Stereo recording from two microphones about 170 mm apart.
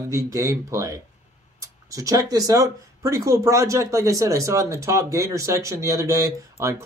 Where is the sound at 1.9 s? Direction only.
20° right (ahead or behind).